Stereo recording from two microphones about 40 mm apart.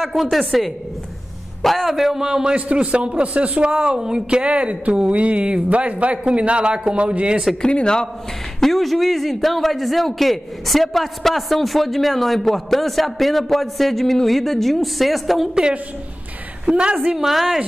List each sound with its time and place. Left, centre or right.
0.0 s a man's voice: centre
2.5 s a man's voice: right
7.6 s a man's voice: left
8.5 s a man's voice: centre
16.6 s a man's voice: right
17.2 s a man's voice: centre